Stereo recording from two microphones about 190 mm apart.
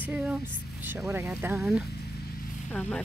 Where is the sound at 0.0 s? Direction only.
5° right (ahead or behind).